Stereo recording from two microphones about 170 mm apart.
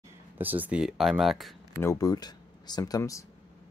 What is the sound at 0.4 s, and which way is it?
Speech, 10° right (ahead or behind).